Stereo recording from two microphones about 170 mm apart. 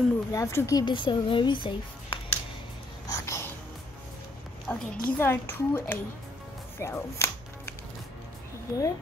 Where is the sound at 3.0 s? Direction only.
20° left (ahead or behind).